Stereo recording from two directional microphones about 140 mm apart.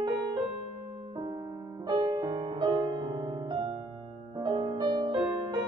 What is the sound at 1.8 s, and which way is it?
Music, 30° right (ahead or behind).